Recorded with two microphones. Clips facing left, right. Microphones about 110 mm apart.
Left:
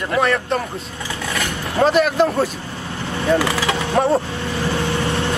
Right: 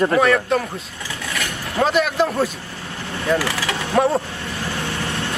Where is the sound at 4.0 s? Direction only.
10° left (ahead or behind).